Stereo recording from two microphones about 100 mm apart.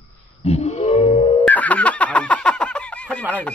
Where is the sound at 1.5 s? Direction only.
15° left (ahead or behind).